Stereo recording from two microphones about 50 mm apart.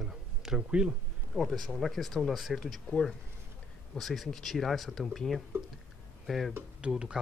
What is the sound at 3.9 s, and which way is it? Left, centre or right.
Speech, centre.